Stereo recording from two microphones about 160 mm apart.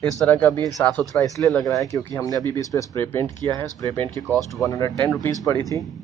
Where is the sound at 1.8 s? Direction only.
15° left (ahead or behind).